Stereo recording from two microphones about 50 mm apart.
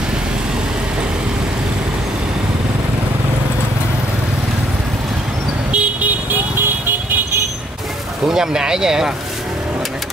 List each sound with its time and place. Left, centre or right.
5.7 s vehicle: right
8.3 s speech: centre